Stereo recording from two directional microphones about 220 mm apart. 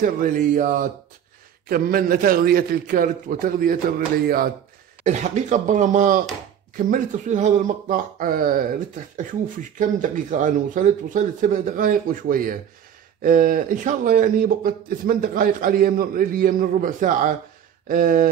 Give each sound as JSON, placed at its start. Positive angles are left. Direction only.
{"t": 0.0, "sound": "speech", "side_deg": -35}
{"t": 5.0, "sound": "speech", "side_deg": -35}